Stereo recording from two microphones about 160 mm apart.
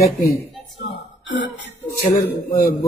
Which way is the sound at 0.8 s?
90° left.